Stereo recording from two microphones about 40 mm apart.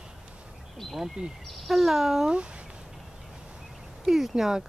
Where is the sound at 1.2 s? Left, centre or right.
Right.